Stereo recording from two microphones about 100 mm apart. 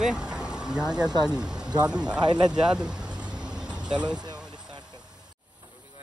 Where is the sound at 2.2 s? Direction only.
45° right (ahead or behind).